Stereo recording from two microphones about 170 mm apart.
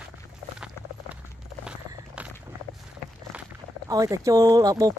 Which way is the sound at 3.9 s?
20° right (ahead or behind).